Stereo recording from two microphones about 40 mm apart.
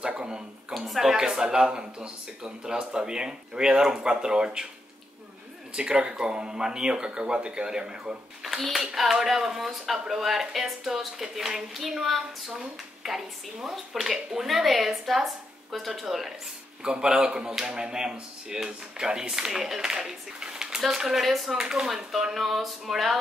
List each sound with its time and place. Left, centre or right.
0.0 s a woman's voice: right
0.7 s speech: centre
5.8 s speech: right
8.4 s a woman's voice: centre
16.8 s a woman's voice: right; by 21.5 s centre
21.5 s a woman's voice: centre